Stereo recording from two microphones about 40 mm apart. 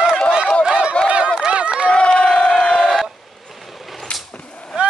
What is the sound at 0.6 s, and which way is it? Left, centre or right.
Run, right.